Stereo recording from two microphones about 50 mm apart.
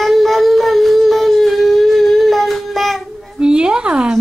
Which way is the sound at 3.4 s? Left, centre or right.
Centre.